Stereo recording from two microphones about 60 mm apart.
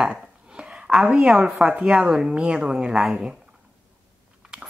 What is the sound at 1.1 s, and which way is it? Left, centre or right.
Speech, centre.